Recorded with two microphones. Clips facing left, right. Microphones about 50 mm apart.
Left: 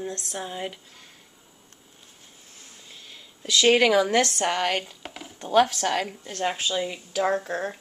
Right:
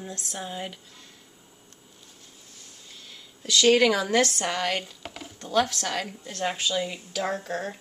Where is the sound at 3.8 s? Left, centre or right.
Centre.